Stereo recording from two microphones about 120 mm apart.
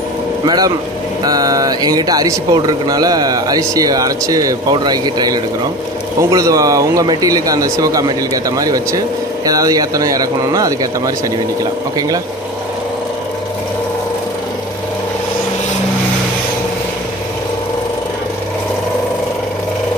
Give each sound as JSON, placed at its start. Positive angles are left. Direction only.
{"t": 0.5, "sound": "a man's voice", "side_deg": -35}